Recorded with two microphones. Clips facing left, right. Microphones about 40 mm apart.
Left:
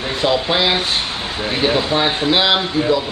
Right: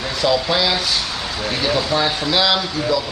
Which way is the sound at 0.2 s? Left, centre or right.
Left.